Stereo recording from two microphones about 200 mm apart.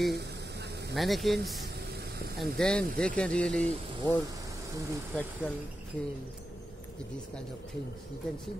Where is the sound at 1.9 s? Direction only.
55° right (ahead or behind).